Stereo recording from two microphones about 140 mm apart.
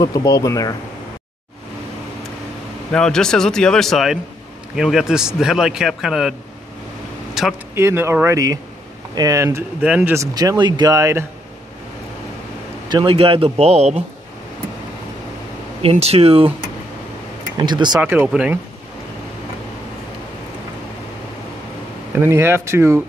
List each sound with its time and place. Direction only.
0.0 s speech: 25° left (ahead or behind)
2.9 s a man's voice: 5° left (ahead or behind)
7.4 s a sound: 5° right (ahead or behind)
7.7 s speech: 20° right (ahead or behind)
12.8 s speech: 35° right (ahead or behind)
15.8 s speech: 45° right (ahead or behind)
17.6 s speech: 35° right (ahead or behind)
18.0 s speech: 15° right (ahead or behind)
22.1 s speech: 15° right (ahead or behind)